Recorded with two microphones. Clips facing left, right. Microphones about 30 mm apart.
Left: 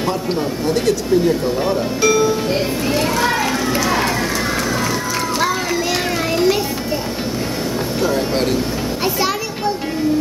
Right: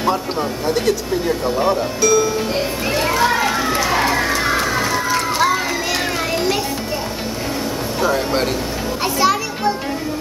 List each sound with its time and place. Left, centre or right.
0.7 s speech: centre
2.0 s speech: centre
2.9 s a sound: centre
8.0 s speech: centre
9.0 s children playing: centre